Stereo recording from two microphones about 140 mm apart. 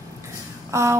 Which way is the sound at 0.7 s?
20° right (ahead or behind).